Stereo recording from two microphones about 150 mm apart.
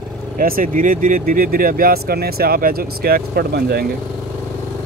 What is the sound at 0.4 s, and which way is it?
Speech, 70° right (ahead or behind).